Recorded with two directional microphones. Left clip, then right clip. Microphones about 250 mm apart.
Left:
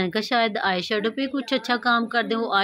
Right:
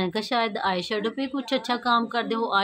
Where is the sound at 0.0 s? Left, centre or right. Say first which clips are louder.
Left 3 dB; centre.